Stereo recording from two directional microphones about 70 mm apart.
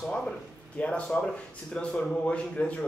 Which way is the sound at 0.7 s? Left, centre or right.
Centre.